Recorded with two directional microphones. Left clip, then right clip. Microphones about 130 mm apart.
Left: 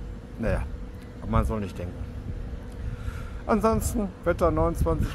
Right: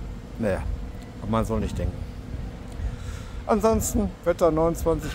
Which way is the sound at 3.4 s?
5° right (ahead or behind).